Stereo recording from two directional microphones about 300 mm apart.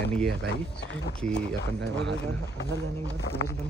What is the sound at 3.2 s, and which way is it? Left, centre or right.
Speech, left.